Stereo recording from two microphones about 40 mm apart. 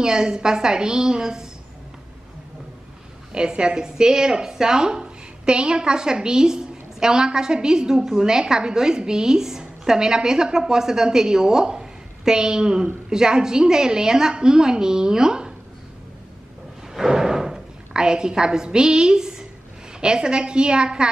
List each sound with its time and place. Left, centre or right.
0.0 s speech: centre
3.3 s speech: right
17.1 s a woman's voice: centre